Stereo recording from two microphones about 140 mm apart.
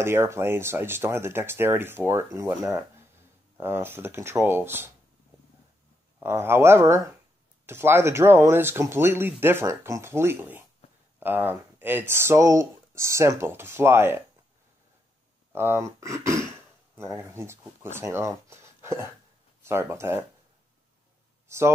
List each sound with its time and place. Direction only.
0.0 s speech: 20° right (ahead or behind)
6.1 s speech: 15° right (ahead or behind)
15.5 s speech: 15° right (ahead or behind)
18.5 s a sound: 20° right (ahead or behind)
19.6 s speech: 15° right (ahead or behind)